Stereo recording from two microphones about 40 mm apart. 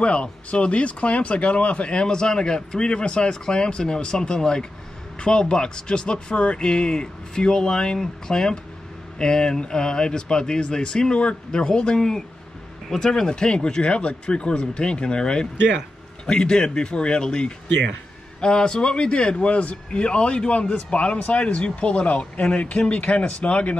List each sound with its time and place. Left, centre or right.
0.0 s speech: left; by 13.3 s centre
13.3 s speech: left